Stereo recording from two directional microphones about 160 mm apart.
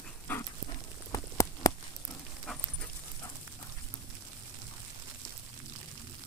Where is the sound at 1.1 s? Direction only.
20° left (ahead or behind).